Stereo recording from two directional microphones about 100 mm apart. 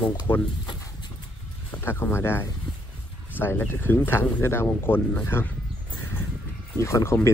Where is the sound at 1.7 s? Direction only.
25° left (ahead or behind).